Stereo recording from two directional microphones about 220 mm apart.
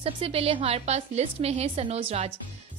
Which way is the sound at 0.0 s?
25° right (ahead or behind).